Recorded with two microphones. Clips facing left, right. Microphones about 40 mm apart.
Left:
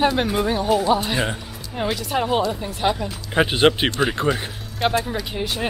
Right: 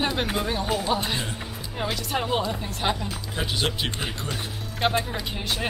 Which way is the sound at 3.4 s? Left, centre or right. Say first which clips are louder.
Left 8 dB; left.